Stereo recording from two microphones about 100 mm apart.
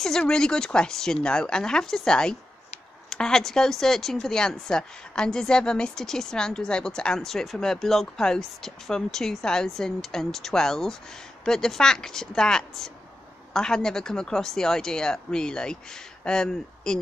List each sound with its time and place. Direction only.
0.0 s speech: 5° left (ahead or behind)